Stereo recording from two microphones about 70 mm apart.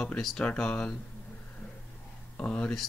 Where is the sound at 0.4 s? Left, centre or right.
Centre.